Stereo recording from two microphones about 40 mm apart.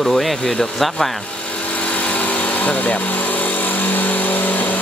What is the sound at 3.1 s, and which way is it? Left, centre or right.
Power tool, left.